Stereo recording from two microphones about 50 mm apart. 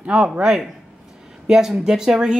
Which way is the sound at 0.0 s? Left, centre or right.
Right.